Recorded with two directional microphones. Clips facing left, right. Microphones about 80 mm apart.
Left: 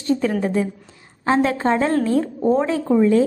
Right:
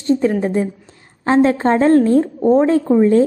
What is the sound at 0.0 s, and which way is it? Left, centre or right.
A woman's voice, right.